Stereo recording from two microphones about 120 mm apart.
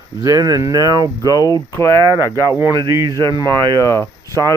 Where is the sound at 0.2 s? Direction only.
30° right (ahead or behind).